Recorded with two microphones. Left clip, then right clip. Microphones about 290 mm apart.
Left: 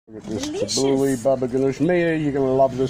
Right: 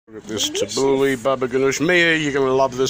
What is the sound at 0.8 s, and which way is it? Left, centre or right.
Speech, right.